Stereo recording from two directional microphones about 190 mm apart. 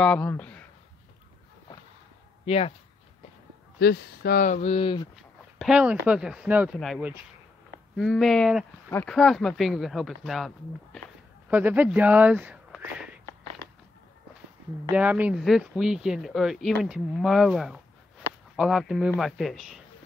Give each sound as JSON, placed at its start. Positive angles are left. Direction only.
{"t": 0.0, "sound": "speech", "side_deg": 5}
{"t": 2.4, "sound": "speech", "side_deg": 35}
{"t": 3.8, "sound": "speech", "side_deg": 60}
{"t": 5.1, "sound": "speech", "side_deg": 0}
{"t": 14.9, "sound": "speech", "side_deg": -10}